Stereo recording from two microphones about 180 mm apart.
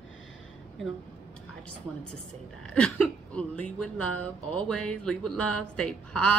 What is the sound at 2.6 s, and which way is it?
Speech, 5° left (ahead or behind).